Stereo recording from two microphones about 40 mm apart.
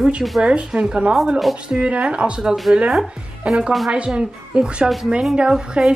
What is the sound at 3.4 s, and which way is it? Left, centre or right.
Speech, centre.